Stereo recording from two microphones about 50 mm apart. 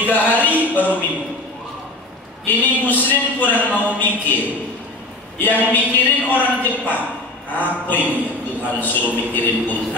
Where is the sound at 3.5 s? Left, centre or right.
Right.